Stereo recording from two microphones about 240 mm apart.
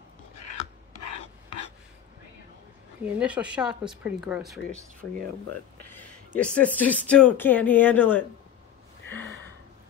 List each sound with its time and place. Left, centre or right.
0.3 s scissors: left
3.1 s speech: centre
5.5 s a sound: centre
6.8 s a woman's voice: centre